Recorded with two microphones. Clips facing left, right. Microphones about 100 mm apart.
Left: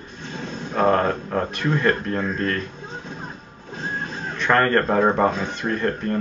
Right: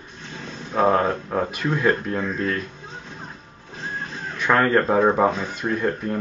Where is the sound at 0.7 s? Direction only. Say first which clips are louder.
Even; 5° right (ahead or behind).